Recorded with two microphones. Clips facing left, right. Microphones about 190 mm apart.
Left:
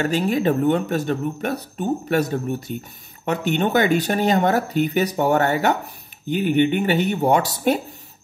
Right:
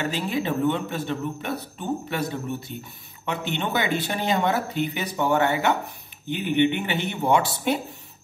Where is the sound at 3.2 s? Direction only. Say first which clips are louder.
Left 7 dB; 45° left (ahead or behind).